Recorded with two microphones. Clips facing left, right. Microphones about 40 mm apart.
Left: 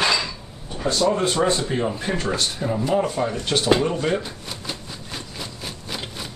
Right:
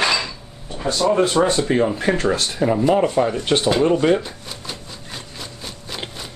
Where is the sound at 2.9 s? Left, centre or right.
Right.